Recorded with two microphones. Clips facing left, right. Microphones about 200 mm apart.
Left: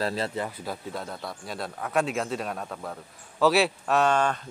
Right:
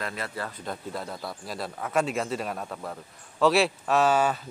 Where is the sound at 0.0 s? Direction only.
30° left (ahead or behind).